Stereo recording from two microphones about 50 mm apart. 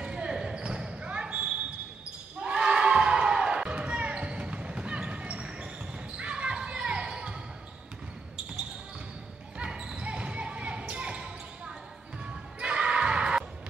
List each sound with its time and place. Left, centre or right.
0.0 s basketball bounce: centre
9.6 s basketball bounce: centre